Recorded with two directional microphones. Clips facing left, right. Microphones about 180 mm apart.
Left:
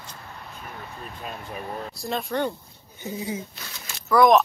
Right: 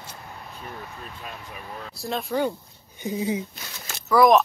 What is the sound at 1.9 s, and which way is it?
Speech, centre (ahead or behind).